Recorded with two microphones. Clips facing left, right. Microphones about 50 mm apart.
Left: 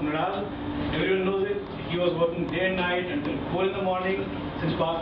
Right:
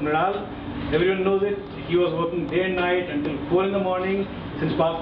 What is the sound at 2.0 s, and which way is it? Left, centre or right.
Speech, centre.